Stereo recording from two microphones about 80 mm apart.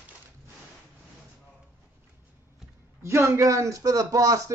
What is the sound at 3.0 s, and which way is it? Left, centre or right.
A man's voice, right.